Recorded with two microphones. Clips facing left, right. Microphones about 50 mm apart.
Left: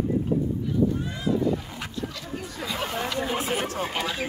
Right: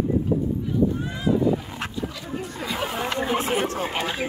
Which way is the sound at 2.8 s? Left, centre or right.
Centre.